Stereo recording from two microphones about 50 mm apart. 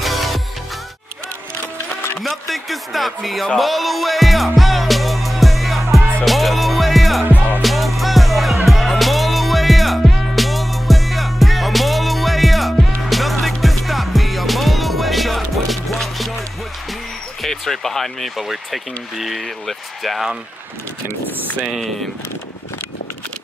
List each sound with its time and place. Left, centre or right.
0.0 s music: centre
2.2 s speech: centre
3.5 s music: centre
7.2 s music: right
7.6 s music: centre
17.4 s basketball bounce: centre
18.5 s speech: centre